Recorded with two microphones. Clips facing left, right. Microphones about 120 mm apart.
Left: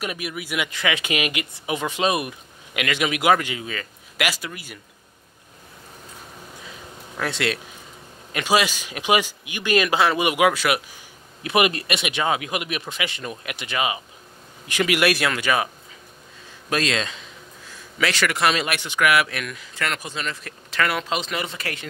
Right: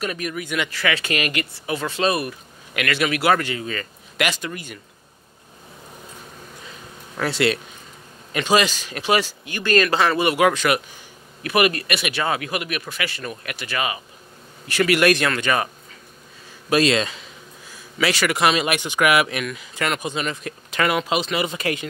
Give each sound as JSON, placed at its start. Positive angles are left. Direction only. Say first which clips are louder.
{"t": 0.0, "sound": "speech", "louder": "right 3 dB", "side_deg": 10}
{"t": 0.7, "sound": "speech", "louder": "right 1 dB", "side_deg": 20}
{"t": 7.2, "sound": "speech", "louder": "right 4 dB", "side_deg": 0}
{"t": 11.4, "sound": "speech", "louder": "right 1 dB", "side_deg": 20}
{"t": 16.6, "sound": "speech", "louder": "right 6 dB", "side_deg": -5}